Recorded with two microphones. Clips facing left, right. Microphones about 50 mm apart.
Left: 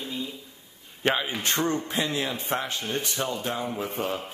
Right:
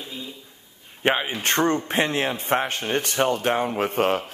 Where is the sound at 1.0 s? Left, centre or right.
Right.